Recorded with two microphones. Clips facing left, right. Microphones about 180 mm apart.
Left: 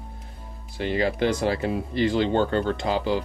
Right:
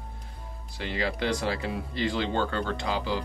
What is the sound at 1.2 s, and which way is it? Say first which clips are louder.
Speech: left 5 dB; 20° left (ahead or behind).